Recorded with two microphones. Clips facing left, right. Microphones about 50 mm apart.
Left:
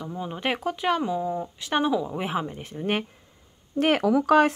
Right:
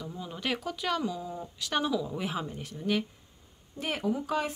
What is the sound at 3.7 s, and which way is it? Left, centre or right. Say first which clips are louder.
Speech: left 10 dB; left.